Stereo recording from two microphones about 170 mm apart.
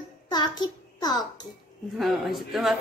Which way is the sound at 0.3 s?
25° left (ahead or behind).